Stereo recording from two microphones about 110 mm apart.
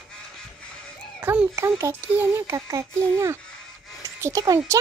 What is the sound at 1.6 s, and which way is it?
A child's voice, 25° right (ahead or behind).